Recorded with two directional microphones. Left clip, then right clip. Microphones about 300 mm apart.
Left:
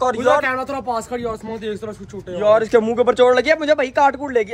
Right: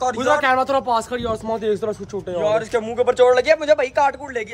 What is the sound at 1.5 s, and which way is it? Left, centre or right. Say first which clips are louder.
Speech: right 6 dB; right.